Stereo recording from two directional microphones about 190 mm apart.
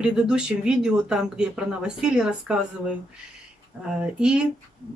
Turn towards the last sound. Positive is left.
turn(degrees=-5)  # may be behind; listen again after turning